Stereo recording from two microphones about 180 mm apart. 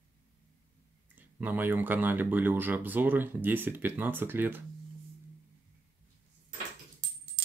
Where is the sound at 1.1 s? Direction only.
10° right (ahead or behind).